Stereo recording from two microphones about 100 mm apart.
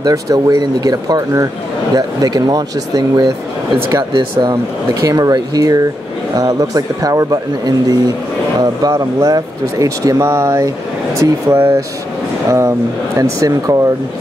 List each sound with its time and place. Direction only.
0.0 s speech: 40° right (ahead or behind)
4.1 s speech: 50° right (ahead or behind)
5.0 s speech: 40° right (ahead or behind)